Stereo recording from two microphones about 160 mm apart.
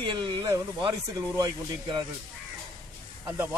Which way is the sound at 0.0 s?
30° right (ahead or behind).